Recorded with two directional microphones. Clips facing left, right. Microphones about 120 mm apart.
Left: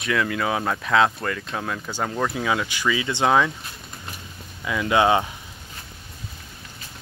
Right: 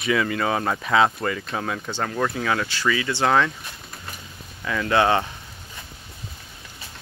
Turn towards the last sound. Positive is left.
turn(degrees=15)  # may be behind; listen again after turning